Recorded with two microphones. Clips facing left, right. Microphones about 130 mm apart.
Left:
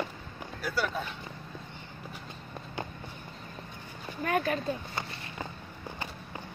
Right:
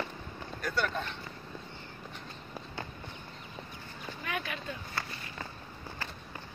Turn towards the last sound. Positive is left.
turn(degrees=45)  # may be behind; listen again after turning